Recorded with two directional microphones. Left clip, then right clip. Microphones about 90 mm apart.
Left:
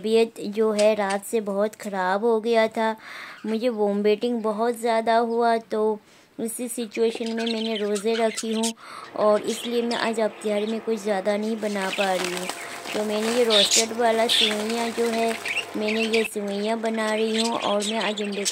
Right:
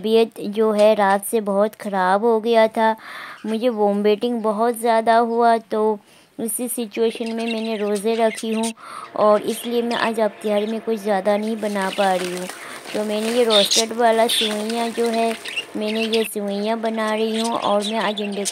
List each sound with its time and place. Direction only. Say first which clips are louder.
0.0 s a woman's voice: right 4 dB; 25° right (ahead or behind)
13.5 s a woman's voice: right 3 dB; 35° right (ahead or behind)
17.5 s speech: right 4 dB; centre (ahead or behind)